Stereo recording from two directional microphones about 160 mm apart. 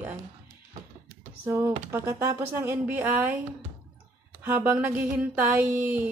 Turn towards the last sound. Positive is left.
turn(degrees=-10)  # may be behind; listen again after turning